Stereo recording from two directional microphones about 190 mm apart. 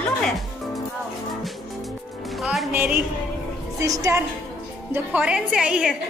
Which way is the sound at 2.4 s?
Centre (ahead or behind).